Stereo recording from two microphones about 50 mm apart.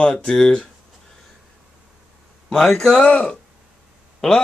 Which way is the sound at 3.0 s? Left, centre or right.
Left.